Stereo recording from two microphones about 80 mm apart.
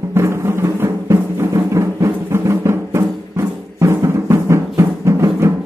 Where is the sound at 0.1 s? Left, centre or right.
Right.